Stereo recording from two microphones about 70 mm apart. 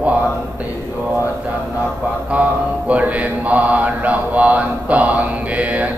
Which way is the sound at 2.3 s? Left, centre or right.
Centre.